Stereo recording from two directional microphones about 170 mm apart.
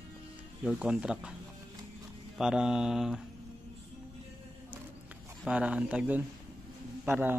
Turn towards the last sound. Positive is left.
turn(degrees=-10)  # may be behind; listen again after turning